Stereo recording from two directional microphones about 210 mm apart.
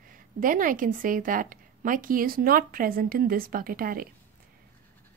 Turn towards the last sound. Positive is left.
turn(degrees=-45)  # may be behind; listen again after turning